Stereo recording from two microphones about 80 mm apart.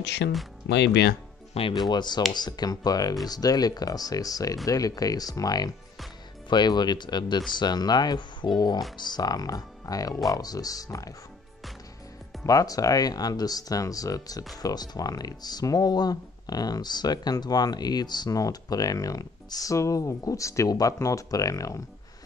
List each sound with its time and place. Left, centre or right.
1.7 s speech: left
6.5 s speech: left
12.4 s speech: left